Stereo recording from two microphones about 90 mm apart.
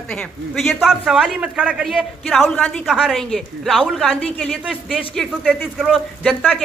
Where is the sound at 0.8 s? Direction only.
5° right (ahead or behind).